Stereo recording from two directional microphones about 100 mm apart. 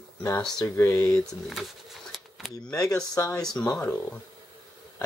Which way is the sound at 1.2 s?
Centre (ahead or behind).